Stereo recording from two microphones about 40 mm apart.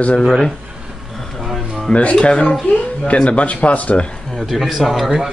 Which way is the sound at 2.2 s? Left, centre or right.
Left.